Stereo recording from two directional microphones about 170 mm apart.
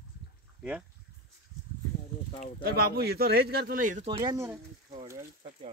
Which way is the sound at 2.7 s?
60° right (ahead or behind).